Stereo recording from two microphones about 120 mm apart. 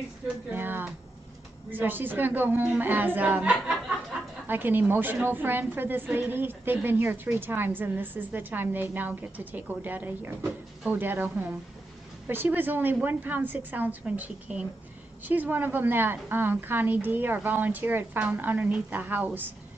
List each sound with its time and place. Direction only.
0.5 s a woman's voice: 15° right (ahead or behind)